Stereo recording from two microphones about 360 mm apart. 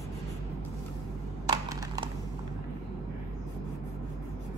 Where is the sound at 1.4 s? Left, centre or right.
Centre.